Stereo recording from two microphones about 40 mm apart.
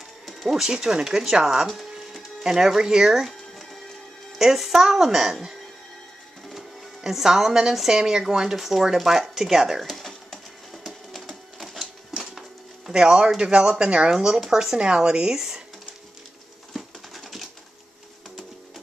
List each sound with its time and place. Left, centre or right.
0.3 s music: centre
0.6 s speech: centre
4.4 s speech: centre
6.5 s music: centre
7.7 s speech: centre
9.8 s a sound: centre
13.4 s speech: right
16.7 s patter: centre